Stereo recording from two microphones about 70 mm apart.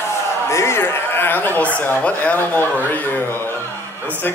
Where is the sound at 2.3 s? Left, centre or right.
Left.